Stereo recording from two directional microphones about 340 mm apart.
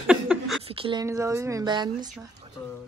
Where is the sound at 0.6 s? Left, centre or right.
Centre.